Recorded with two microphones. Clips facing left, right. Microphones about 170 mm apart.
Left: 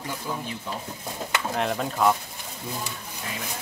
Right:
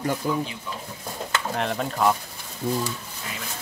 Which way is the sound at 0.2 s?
55° right (ahead or behind).